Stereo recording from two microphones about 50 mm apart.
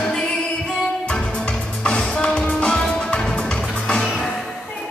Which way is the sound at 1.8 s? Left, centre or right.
Left.